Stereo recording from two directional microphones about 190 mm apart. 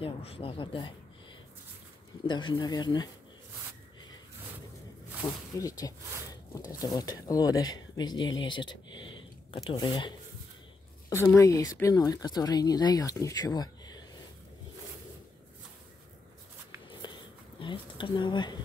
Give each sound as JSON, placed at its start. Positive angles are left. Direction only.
{"t": 0.0, "sound": "speech", "side_deg": 30}
{"t": 2.2, "sound": "speech", "side_deg": 25}
{"t": 5.2, "sound": "speech", "side_deg": 15}
{"t": 7.7, "sound": "a sound", "side_deg": 20}
{"t": 9.7, "sound": "speech", "side_deg": 25}
{"t": 17.0, "sound": "a sound", "side_deg": 25}